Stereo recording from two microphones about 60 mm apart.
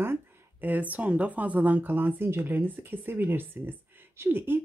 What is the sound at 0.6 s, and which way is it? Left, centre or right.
Speech, right.